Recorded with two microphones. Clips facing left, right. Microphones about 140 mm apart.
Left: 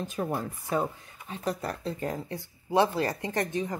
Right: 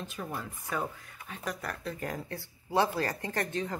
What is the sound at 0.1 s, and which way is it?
Speech, 45° left (ahead or behind).